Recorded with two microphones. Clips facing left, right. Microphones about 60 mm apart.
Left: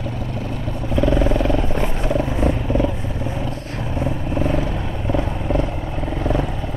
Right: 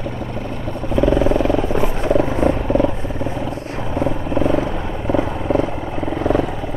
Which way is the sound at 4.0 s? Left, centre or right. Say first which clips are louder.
Right 4 dB; right.